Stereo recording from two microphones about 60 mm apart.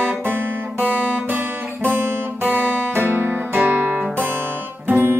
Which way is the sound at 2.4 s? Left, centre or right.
Right.